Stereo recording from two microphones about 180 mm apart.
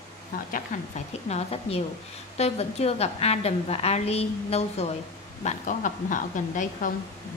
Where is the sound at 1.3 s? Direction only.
35° left (ahead or behind).